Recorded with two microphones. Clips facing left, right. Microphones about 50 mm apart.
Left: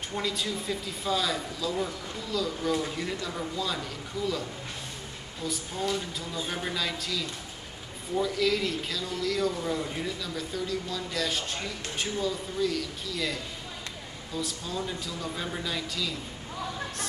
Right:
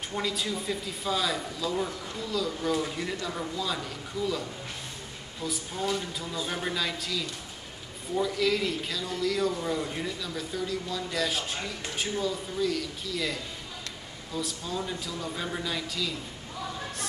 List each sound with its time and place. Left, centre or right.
0.1 s a man's voice: centre